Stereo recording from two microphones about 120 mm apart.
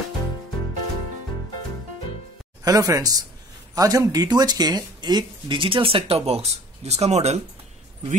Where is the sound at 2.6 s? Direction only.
30° right (ahead or behind); by 7.4 s 65° right (ahead or behind).